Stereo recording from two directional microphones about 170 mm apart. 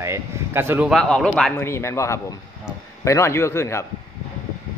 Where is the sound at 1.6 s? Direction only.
15° left (ahead or behind).